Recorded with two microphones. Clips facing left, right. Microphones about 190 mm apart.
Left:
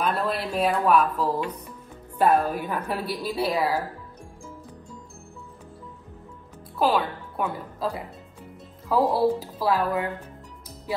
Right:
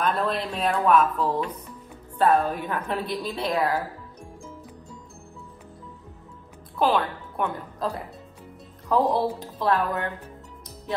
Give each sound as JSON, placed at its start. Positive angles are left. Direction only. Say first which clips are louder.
{"t": 0.0, "sound": "a woman's voice", "louder": "right 1 dB", "side_deg": 5}
{"t": 6.8, "sound": "a woman's voice", "louder": "even", "side_deg": 5}